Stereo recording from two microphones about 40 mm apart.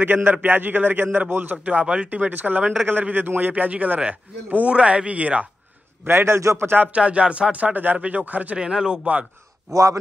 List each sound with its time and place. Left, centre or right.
0.0 s a man's voice: right
1.6 s speech: right
2.0 s a man's voice: right
4.6 s speech: right
6.0 s a man's voice: right
6.9 s speech: right
8.0 s speech: right
8.5 s speech: centre